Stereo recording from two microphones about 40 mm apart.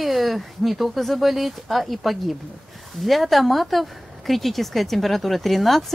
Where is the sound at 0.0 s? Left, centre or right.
Centre.